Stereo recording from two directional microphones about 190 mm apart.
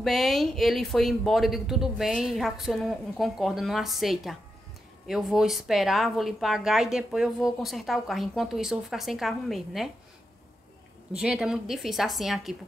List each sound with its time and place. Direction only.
0.0 s a woman's voice: centre (ahead or behind)
11.1 s a woman's voice: 5° right (ahead or behind)